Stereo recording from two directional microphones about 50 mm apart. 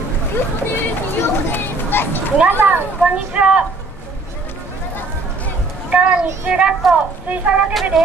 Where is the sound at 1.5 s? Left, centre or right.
Left.